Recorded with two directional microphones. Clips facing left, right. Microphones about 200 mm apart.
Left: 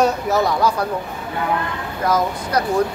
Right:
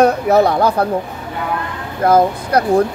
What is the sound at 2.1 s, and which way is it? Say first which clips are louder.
Speech: right 7 dB; 55° right (ahead or behind).